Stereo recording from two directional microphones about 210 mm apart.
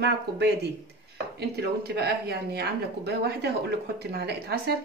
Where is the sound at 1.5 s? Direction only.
50° right (ahead or behind).